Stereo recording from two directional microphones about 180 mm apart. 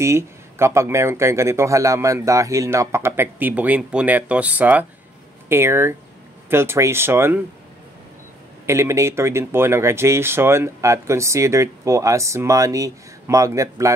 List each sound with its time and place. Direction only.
0.0 s speech: 15° right (ahead or behind)
8.6 s speech: 15° right (ahead or behind)